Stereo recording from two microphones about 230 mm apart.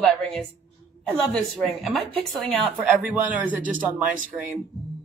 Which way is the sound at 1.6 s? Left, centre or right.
Centre.